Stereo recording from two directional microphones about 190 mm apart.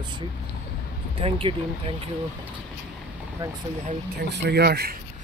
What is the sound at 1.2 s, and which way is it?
Speech, 30° right (ahead or behind).